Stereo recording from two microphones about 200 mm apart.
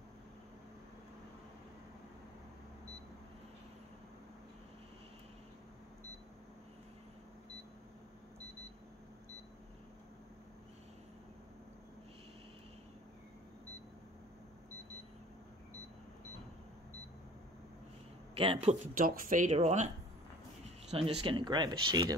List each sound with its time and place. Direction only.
18.4 s speech: 30° right (ahead or behind)
18.9 s speech: 45° right (ahead or behind)
20.9 s speech: 30° right (ahead or behind)